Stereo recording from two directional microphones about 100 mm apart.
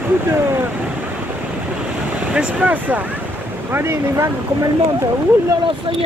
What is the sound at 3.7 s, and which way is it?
Speech, 25° right (ahead or behind).